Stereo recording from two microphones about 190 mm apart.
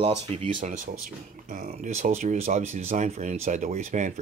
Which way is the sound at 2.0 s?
40° right (ahead or behind).